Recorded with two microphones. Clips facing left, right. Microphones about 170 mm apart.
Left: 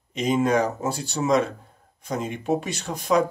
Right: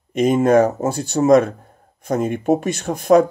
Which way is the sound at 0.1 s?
50° right (ahead or behind).